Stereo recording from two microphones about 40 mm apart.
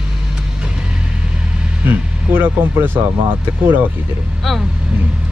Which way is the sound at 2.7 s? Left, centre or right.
Right.